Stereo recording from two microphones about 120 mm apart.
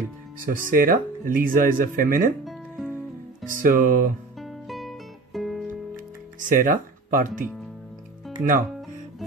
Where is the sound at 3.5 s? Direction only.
90° right.